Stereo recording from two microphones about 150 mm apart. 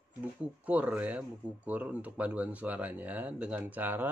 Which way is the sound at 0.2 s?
10° right (ahead or behind).